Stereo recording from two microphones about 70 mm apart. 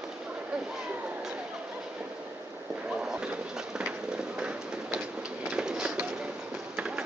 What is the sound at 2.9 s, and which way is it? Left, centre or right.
Bird, centre.